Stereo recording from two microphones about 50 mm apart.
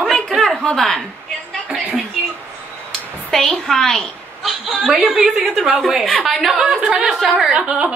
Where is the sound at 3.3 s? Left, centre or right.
Centre.